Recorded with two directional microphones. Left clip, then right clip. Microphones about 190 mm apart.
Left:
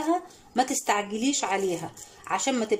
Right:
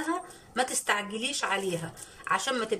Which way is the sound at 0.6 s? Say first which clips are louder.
Left 3 dB; 20° left (ahead or behind).